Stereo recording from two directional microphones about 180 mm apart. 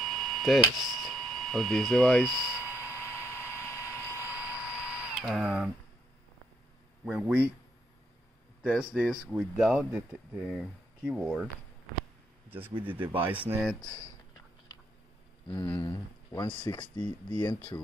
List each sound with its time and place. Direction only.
0.0 s a sound: centre (ahead or behind)
0.7 s speech: centre (ahead or behind)
2.6 s vehicle: 15° left (ahead or behind)
4.2 s a sound: 10° right (ahead or behind)
7.1 s speech: 5° right (ahead or behind)
8.6 s speech: 5° right (ahead or behind)
12.4 s speech: 10° right (ahead or behind)
13.6 s speech: centre (ahead or behind)
15.4 s a sound: 25° left (ahead or behind)
15.7 s speech: 15° left (ahead or behind)